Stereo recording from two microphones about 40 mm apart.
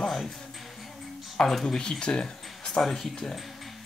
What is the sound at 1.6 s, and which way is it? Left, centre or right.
Speech, centre.